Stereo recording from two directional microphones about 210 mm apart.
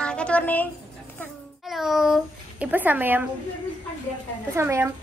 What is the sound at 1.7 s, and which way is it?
A child's voice, centre (ahead or behind).